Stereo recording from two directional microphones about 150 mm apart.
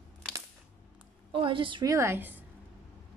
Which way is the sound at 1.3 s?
35° right (ahead or behind).